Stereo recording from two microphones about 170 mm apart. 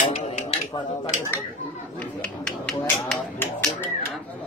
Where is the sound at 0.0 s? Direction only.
40° left (ahead or behind).